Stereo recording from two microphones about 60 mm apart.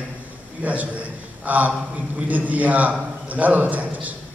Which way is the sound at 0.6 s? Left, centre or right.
Right.